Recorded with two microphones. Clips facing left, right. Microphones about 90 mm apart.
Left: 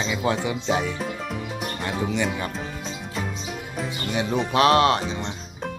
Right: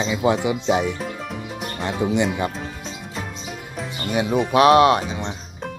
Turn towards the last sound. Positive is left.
turn(degrees=-5)  # may be behind; listen again after turning